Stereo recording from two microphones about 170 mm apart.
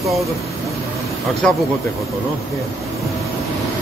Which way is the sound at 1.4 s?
5° left (ahead or behind).